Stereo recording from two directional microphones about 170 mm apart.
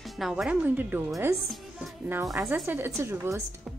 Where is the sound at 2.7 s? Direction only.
15° right (ahead or behind).